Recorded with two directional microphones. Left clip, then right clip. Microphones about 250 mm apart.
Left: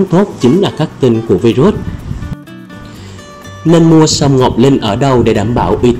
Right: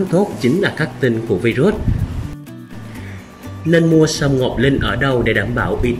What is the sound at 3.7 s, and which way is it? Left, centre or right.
Speech, centre.